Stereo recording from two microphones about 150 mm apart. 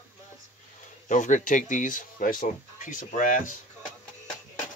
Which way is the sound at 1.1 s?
60° left (ahead or behind).